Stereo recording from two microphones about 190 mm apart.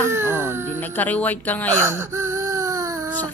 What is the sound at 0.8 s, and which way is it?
Speech, 10° left (ahead or behind).